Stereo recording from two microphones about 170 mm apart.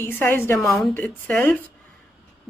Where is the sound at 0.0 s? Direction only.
10° left (ahead or behind).